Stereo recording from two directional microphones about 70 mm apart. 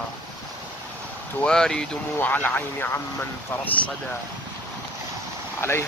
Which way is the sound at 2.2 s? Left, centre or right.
Left.